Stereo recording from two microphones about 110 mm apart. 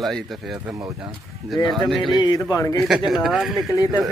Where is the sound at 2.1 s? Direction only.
40° left (ahead or behind).